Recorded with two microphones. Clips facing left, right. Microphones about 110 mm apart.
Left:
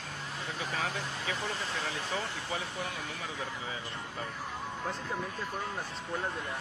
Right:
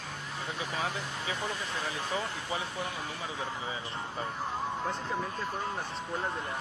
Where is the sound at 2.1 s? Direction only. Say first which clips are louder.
Right 3 dB; 30° right (ahead or behind).